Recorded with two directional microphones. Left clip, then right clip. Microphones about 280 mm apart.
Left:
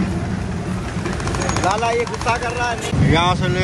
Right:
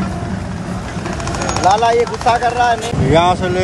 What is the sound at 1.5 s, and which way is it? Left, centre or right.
Speech, right.